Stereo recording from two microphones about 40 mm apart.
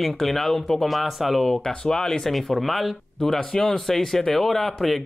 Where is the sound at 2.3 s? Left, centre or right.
Centre.